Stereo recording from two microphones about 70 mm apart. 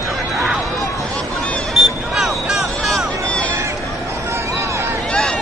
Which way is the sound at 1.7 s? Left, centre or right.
Centre.